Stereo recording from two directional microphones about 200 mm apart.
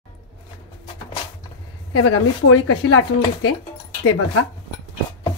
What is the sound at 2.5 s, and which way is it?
Speech, 90° left.